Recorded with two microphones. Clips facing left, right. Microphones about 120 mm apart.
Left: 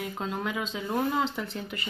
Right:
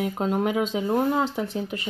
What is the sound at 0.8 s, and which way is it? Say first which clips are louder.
Speech: right 3 dB; 30° right (ahead or behind).